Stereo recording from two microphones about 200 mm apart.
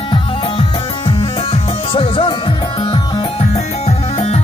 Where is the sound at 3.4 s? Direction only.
35° left (ahead or behind).